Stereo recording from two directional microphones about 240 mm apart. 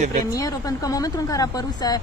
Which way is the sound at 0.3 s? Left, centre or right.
Centre.